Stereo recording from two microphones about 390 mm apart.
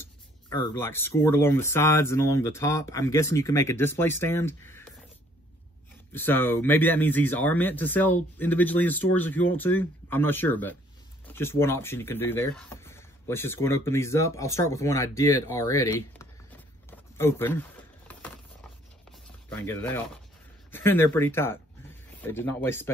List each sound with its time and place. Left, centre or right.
0.5 s speech: centre
6.1 s speech: centre
16.9 s a sound: centre
19.5 s speech: centre